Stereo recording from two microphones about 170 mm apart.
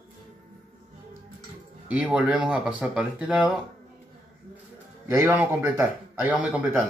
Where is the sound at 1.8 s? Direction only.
10° right (ahead or behind).